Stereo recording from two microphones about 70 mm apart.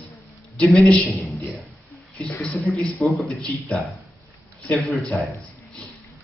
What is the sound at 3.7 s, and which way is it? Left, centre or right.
Speech, centre.